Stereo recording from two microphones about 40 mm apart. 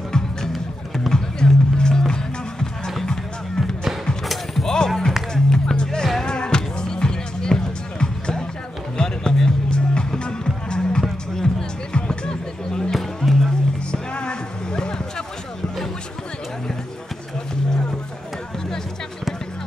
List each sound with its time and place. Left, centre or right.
0.9 s music: centre
12.9 s music: centre
14.1 s a sound: left